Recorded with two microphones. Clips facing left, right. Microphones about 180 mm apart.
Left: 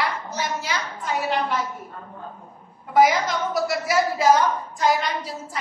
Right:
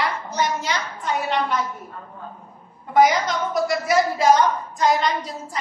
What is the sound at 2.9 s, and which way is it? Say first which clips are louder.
A woman's voice: right 1 dB; 5° left (ahead or behind).